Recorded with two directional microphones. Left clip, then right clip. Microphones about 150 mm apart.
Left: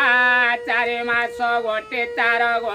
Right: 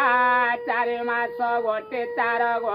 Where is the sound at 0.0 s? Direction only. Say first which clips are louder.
Left 3 dB; 20° left (ahead or behind).